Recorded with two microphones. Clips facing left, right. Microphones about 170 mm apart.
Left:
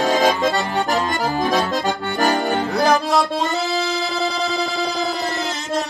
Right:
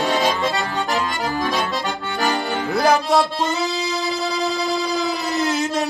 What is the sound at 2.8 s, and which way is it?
Music, centre (ahead or behind).